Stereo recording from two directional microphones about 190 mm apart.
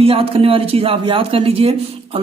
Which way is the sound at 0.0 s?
30° right (ahead or behind).